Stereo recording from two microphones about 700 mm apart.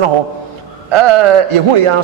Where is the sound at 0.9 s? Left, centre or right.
Right.